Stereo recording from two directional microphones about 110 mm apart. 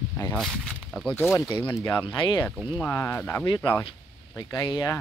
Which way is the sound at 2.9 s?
25° left (ahead or behind).